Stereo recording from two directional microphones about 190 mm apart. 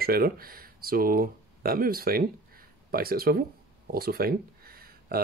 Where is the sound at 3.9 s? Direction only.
50° right (ahead or behind).